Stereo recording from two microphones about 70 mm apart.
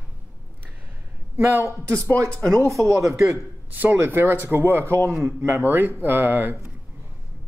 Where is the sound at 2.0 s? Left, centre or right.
Right.